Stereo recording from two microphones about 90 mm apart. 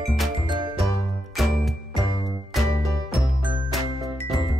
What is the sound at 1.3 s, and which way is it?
Music, centre (ahead or behind).